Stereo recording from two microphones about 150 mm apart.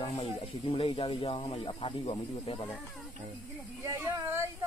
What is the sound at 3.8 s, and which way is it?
Speech, 20° right (ahead or behind).